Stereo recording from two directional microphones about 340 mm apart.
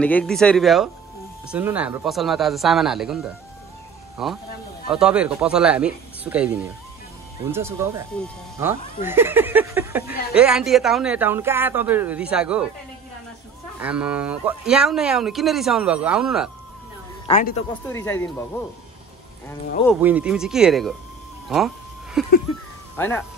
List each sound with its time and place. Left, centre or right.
0.0 s speech: centre
13.7 s speech: centre
17.3 s speech: left
17.9 s speech: centre
19.9 s speech: centre
21.5 s a sound: centre
22.9 s speech: centre